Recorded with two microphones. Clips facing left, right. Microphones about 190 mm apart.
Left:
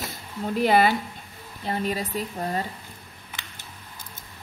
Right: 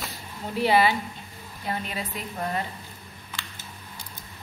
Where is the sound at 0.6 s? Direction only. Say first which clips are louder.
Left 1 dB; 45° left (ahead or behind).